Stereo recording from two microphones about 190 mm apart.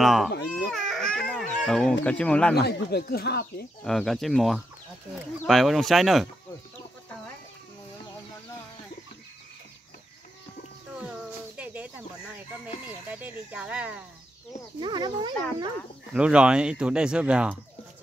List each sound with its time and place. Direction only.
0.0 s baby cry: centre (ahead or behind)
2.0 s speech: 5° left (ahead or behind)
2.5 s speech: 60° left (ahead or behind)
3.8 s speech: centre (ahead or behind)
11.5 s chicken: 10° right (ahead or behind)
13.1 s speech: 10° right (ahead or behind)
14.8 s speech: 25° right (ahead or behind)
16.1 s speech: 5° right (ahead or behind)